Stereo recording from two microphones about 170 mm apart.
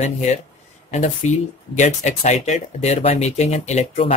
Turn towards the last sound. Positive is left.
turn(degrees=40)  # may be behind; listen again after turning